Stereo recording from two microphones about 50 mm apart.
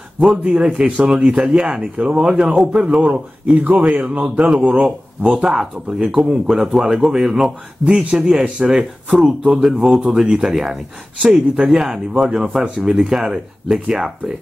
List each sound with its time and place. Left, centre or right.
0.4 s speech: right
4.8 s speech: centre
11.2 s speech: right
11.6 s speech: centre